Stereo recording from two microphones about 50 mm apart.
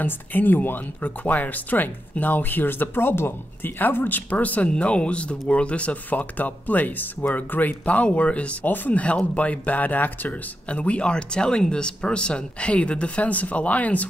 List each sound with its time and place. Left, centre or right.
0.0 s speech: left
6.0 s speech: left
10.7 s speech: left